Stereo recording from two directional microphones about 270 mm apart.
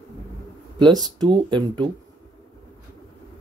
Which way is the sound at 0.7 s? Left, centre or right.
Centre.